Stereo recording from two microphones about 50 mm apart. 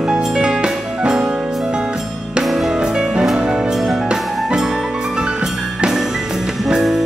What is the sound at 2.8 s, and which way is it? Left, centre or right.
Music, centre.